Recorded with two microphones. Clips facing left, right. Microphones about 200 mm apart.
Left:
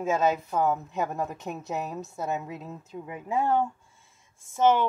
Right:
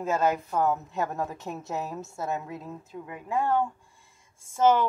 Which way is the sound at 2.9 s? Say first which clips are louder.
Left 1 dB; 20° left (ahead or behind).